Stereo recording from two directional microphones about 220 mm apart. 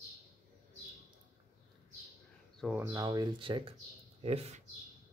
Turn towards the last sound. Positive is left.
turn(degrees=-30)  # may be behind; listen again after turning